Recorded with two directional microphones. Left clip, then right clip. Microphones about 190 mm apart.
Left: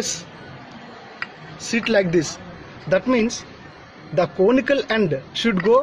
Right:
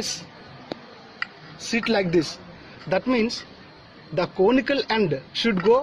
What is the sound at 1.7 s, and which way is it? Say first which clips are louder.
Speech: left 4 dB; 25° right (ahead or behind).